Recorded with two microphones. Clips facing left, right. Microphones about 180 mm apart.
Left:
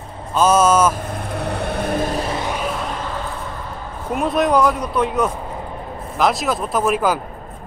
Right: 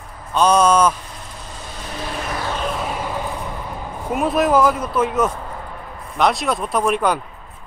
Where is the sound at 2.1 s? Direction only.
35° left (ahead or behind).